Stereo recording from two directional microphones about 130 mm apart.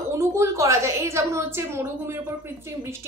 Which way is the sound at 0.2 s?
20° right (ahead or behind).